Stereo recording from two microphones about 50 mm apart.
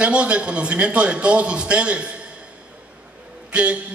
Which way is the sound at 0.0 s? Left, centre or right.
Right.